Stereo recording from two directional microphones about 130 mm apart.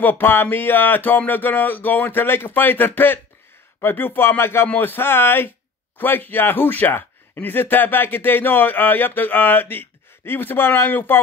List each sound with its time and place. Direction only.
0.0 s speech: 15° left (ahead or behind)